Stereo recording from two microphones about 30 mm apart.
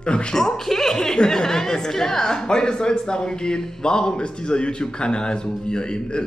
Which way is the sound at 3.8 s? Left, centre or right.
Left.